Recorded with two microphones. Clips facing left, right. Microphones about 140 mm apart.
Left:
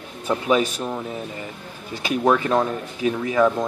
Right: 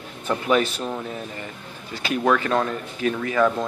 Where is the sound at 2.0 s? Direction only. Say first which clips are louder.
Left 2 dB; 15° left (ahead or behind).